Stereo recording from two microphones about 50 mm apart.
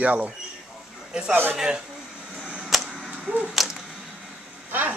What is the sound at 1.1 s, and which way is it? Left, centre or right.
Speech, centre.